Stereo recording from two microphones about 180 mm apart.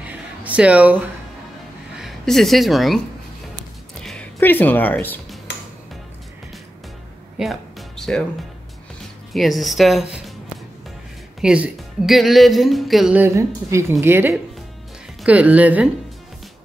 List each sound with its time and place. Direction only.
0.0 s a sound: 10° right (ahead or behind)
2.0 s speech: centre (ahead or behind)
3.9 s typing: centre (ahead or behind)
7.3 s music: centre (ahead or behind)
9.3 s speech: centre (ahead or behind)
11.4 s a woman's voice: 5° right (ahead or behind)